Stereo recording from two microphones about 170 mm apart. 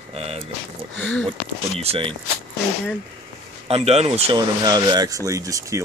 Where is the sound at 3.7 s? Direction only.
35° right (ahead or behind).